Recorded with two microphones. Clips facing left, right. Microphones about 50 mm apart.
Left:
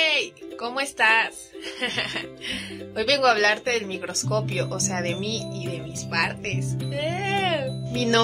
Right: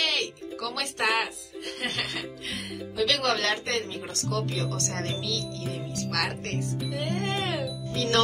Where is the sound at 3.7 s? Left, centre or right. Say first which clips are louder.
Left 4 dB; left.